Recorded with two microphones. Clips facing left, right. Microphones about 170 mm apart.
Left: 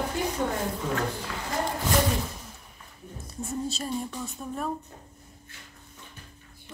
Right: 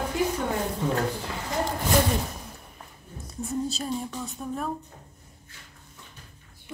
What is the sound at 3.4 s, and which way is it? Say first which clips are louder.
Speech: right 2 dB; centre (ahead or behind).